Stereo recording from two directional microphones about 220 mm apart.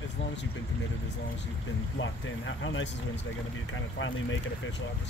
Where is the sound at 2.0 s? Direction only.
60° left (ahead or behind).